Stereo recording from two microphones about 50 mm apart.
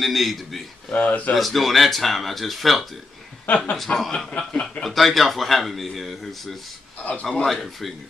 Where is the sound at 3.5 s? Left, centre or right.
Left.